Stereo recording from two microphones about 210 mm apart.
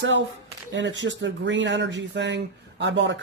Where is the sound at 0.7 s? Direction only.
60° right (ahead or behind).